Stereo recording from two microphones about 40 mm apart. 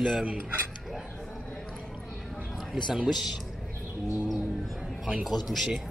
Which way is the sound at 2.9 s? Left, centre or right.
Centre.